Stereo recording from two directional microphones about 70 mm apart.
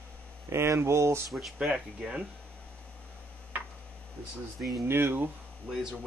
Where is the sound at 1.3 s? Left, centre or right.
Centre.